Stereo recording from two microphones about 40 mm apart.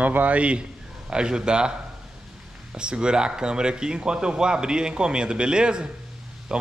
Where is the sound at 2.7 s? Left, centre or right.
Right.